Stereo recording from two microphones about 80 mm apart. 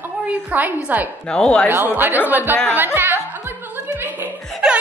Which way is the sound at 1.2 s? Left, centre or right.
Centre.